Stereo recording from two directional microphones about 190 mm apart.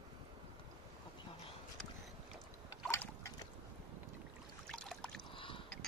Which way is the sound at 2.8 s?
15° left (ahead or behind).